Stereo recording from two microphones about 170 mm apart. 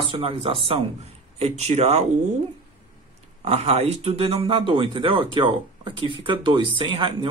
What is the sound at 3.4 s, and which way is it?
Speech, 35° right (ahead or behind).